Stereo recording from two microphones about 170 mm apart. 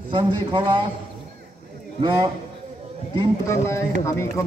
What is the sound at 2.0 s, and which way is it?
Speech, 25° right (ahead or behind).